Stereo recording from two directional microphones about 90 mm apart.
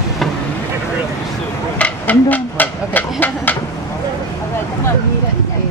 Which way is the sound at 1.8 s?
15° left (ahead or behind).